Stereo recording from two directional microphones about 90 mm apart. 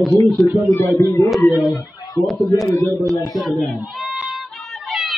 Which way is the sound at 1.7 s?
45° left (ahead or behind).